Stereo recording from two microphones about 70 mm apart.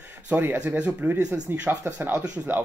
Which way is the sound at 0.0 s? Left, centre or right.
Right.